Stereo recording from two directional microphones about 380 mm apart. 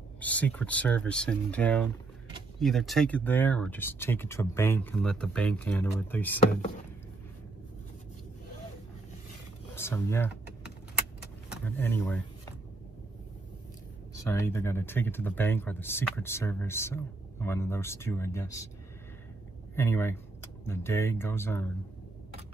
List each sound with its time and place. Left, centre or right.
0.2 s speech: centre
9.8 s speech: centre
11.4 s a sound: centre
14.1 s speech: centre
19.7 s speech: centre